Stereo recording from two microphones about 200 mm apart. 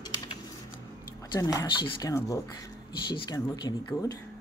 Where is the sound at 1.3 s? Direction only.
15° left (ahead or behind).